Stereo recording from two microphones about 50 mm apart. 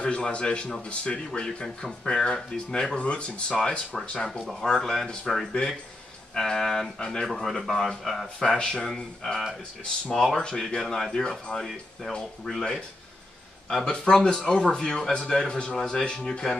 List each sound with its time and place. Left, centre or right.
0.0 s speech: left
3.0 s speech: left
4.3 s speech: centre
12.4 s speech: centre